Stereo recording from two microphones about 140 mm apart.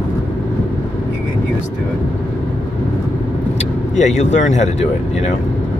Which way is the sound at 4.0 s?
55° left (ahead or behind).